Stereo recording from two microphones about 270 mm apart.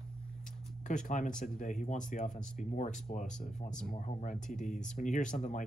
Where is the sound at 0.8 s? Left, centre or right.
Left.